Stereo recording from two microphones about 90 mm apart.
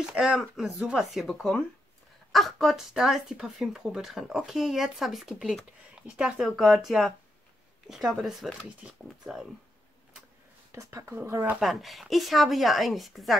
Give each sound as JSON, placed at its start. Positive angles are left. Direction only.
{"t": 0.1, "sound": "speech", "side_deg": -10}
{"t": 10.7, "sound": "speech", "side_deg": -35}
{"t": 11.1, "sound": "speech", "side_deg": -25}
{"t": 11.6, "sound": "speech", "side_deg": 0}